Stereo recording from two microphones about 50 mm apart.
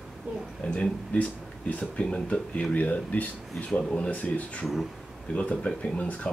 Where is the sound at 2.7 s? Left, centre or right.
Left.